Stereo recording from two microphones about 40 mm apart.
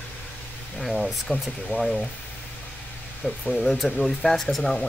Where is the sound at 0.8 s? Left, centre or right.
Centre.